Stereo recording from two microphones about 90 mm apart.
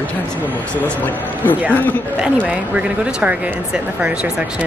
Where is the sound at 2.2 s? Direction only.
15° right (ahead or behind).